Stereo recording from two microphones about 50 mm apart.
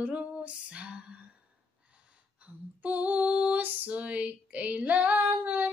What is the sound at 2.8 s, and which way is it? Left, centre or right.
Music, right.